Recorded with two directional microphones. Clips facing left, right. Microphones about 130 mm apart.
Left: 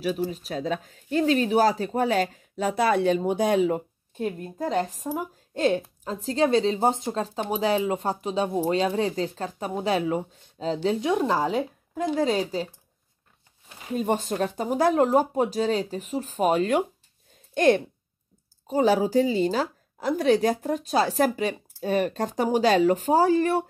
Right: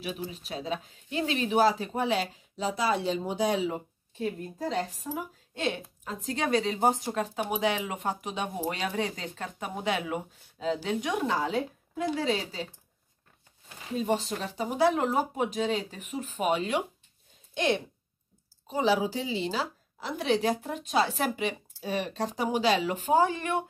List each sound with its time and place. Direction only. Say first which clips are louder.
0.0 s a woman's voice: left 9 dB; 40° left (ahead or behind)
13.9 s a woman's voice: left 4 dB; 50° left (ahead or behind)